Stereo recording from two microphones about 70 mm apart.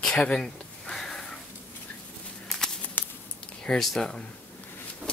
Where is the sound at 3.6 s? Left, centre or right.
Centre.